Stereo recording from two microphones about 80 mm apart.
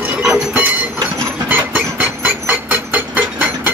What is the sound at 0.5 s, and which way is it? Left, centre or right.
Train, right.